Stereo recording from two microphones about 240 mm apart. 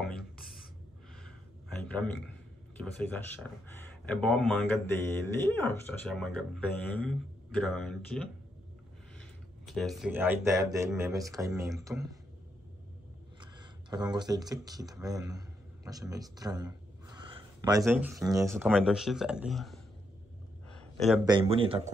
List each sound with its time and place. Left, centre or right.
1.8 s a man's voice: centre
9.7 s speech: centre
13.4 s speech: centre
18.7 s a man's voice: centre
20.7 s a sound: centre
21.3 s speech: right